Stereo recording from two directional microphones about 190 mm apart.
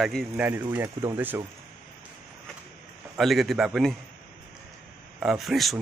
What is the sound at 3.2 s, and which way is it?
Speech, centre (ahead or behind).